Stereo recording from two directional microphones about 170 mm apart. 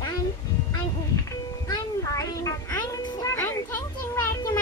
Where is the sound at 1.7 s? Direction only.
20° left (ahead or behind).